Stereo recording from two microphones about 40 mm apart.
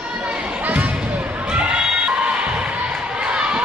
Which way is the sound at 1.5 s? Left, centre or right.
Right.